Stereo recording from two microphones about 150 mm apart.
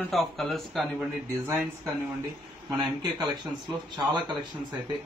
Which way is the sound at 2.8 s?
30° right (ahead or behind).